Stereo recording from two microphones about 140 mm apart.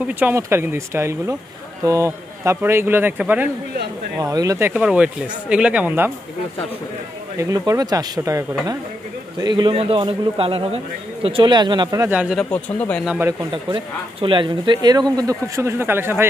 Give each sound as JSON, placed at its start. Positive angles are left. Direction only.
{"t": 0.0, "sound": "speech", "side_deg": -15}
{"t": 4.2, "sound": "speech", "side_deg": -25}
{"t": 7.3, "sound": "speech", "side_deg": -25}
{"t": 9.6, "sound": "a man's voice", "side_deg": -40}
{"t": 12.1, "sound": "speech", "side_deg": -10}
{"t": 12.4, "sound": "speech", "side_deg": 10}
{"t": 13.0, "sound": "speech", "side_deg": -10}
{"t": 13.5, "sound": "speech", "side_deg": -35}